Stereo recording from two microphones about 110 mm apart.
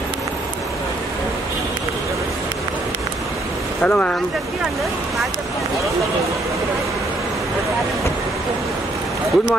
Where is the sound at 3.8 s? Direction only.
10° left (ahead or behind).